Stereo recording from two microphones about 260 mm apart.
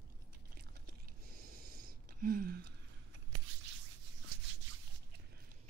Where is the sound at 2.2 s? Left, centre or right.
Right.